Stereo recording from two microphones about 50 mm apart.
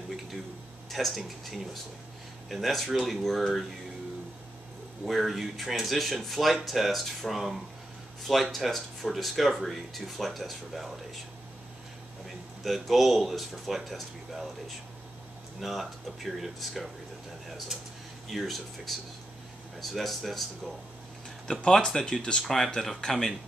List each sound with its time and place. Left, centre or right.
0.8 s speech: centre
5.0 s speech: centre
12.6 s speech: centre
15.6 s speech: centre
17.5 s a sound: centre
18.3 s speech: centre
21.7 s speech: centre
22.4 s speech: centre